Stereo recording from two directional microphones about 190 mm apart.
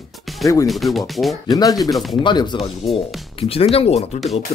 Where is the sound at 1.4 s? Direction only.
20° left (ahead or behind).